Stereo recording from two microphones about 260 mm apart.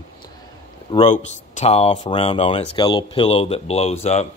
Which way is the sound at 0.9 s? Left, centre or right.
Left.